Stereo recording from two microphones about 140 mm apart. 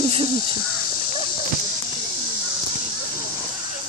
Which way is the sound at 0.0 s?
45° right (ahead or behind).